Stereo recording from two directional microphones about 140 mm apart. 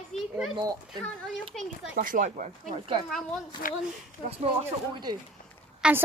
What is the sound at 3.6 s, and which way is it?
Speech, 80° left.